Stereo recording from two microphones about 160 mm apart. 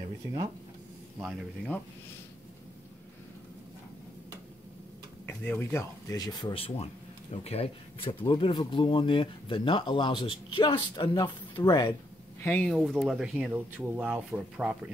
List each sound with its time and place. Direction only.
5.2 s speech: 10° left (ahead or behind)
6.5 s speech: 35° left (ahead or behind)
12.4 s speech: 10° left (ahead or behind); by 14.8 s 5° right (ahead or behind)